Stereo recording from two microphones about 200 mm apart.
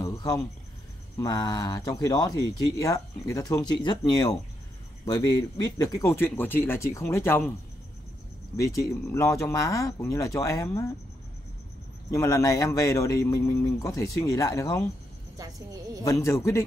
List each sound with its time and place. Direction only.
0.0 s cricket: 20° left (ahead or behind)
1.1 s a man's voice: 20° left (ahead or behind)
8.5 s a man's voice: 15° left (ahead or behind)
12.1 s a man's voice: 15° left (ahead or behind)
15.3 s speech: 20° right (ahead or behind)
16.0 s a man's voice: 15° left (ahead or behind)